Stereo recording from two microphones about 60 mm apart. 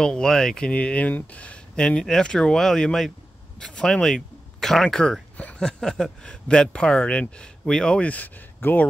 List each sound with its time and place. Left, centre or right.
0.0 s speech: centre
0.7 s speech: left
8.5 s speech: left